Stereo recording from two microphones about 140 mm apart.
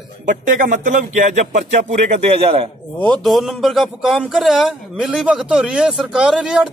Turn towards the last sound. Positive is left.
turn(degrees=-5)  # may be behind; listen again after turning